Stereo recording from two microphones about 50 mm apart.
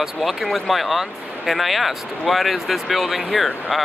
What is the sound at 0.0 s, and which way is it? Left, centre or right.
Speech, centre.